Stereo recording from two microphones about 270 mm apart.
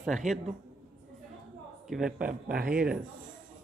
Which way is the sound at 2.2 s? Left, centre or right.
Right.